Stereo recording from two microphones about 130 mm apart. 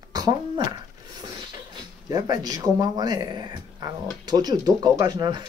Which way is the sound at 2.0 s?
30° right (ahead or behind).